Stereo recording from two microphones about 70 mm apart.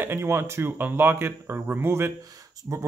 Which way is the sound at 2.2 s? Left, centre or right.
Right.